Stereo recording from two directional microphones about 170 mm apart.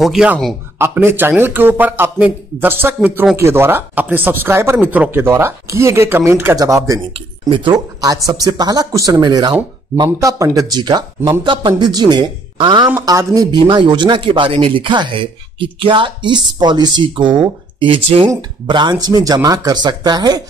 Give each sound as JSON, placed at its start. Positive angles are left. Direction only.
{"t": 0.0, "sound": "a man's voice", "side_deg": -5}
{"t": 0.7, "sound": "speech", "side_deg": -15}